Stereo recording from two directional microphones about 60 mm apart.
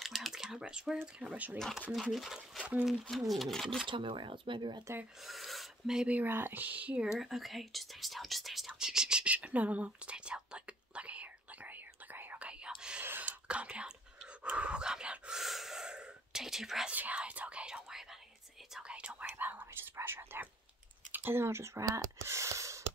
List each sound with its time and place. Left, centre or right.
0.0 s typing: centre
1.0 s speech: right
1.8 s speech: centre
4.9 s speech: right
5.2 s a sound: centre
6.0 s speech: right
7.1 s whispering: centre; by 12.4 s right
12.4 s whispering: centre
13.0 s whispering: right
14.4 s dog: right
15.4 s whispering: centre
16.9 s whispering: right
19.3 s whispering: right
21.1 s gasp: right